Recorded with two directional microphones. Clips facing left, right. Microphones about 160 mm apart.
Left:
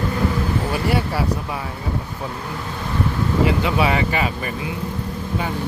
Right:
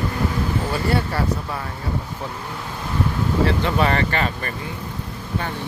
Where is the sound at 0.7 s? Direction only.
10° left (ahead or behind).